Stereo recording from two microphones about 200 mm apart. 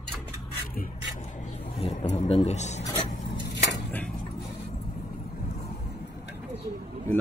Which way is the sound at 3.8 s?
10° left (ahead or behind).